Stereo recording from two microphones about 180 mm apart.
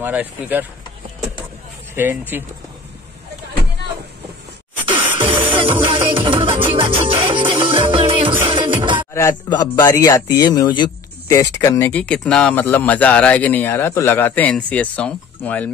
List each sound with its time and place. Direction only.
0.0 s speech: 10° right (ahead or behind)
2.0 s speech: 10° right (ahead or behind)
5.5 s music: 25° right (ahead or behind)
9.1 s a man's voice: 20° left (ahead or behind)